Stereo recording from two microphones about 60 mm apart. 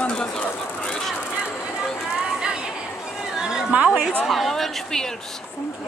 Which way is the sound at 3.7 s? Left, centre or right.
Right.